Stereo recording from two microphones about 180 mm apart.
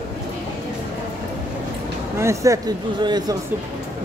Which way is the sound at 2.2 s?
15° right (ahead or behind).